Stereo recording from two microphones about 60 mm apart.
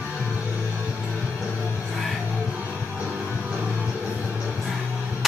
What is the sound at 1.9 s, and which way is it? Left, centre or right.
Music, centre.